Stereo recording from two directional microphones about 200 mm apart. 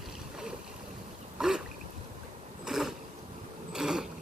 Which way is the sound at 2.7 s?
Centre (ahead or behind).